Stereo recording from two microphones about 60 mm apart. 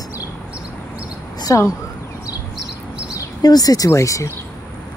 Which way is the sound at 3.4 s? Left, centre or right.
Left.